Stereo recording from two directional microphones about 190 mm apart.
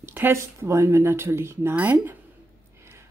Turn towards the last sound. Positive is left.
turn(degrees=-15)  # may be behind; listen again after turning